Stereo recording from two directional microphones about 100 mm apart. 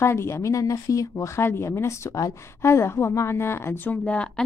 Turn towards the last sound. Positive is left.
turn(degrees=10)  # may be behind; listen again after turning